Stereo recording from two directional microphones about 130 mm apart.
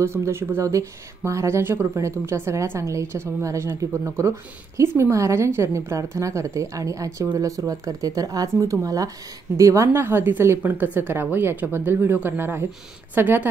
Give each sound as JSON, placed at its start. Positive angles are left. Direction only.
{"t": 0.0, "sound": "a woman's voice", "side_deg": -20}